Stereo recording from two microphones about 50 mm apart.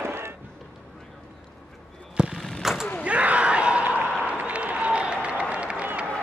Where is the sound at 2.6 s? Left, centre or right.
Centre.